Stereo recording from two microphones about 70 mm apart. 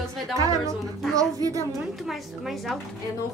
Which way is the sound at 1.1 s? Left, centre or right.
Right.